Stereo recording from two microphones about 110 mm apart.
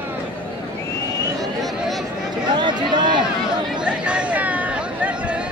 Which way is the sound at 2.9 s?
40° right (ahead or behind).